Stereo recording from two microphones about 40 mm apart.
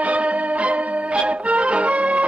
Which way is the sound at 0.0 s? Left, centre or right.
Right.